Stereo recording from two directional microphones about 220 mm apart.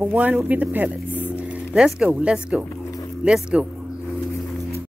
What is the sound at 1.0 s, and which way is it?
Vehicle, 10° left (ahead or behind).